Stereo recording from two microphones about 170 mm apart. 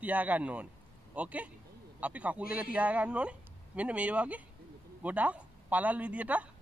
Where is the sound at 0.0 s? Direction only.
10° right (ahead or behind).